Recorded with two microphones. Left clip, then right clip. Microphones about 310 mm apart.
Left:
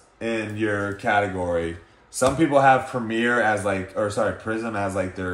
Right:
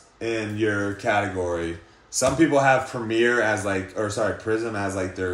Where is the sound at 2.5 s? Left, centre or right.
Left.